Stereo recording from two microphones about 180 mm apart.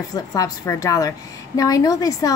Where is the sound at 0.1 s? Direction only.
20° left (ahead or behind).